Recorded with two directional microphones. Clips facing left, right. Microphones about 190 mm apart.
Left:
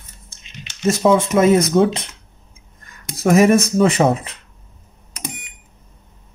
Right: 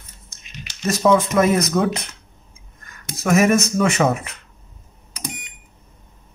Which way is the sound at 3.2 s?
30° left (ahead or behind).